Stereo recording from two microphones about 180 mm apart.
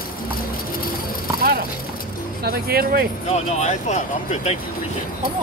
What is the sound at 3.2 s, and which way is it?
Speech, 40° left (ahead or behind).